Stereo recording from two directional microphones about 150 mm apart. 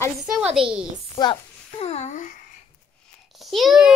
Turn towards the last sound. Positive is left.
turn(degrees=-5)  # may be behind; listen again after turning